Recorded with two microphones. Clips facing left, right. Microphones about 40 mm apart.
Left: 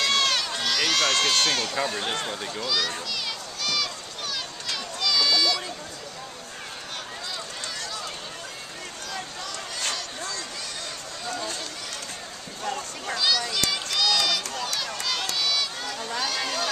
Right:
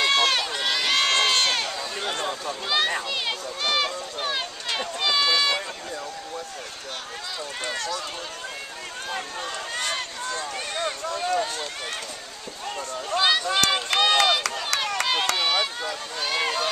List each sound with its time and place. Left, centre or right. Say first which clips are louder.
0.0 s run: right 2 dB; centre
2.0 s speech: right 1 dB; centre
2.6 s a sound: right 4 dB; right
7.6 s run: right 8 dB; right
9.1 s run: right 4 dB; right
13.1 s run: right 4 dB; right
14.7 s a sound: right 6 dB; right
15.3 s run: right 3 dB; right
15.8 s a sound: even; right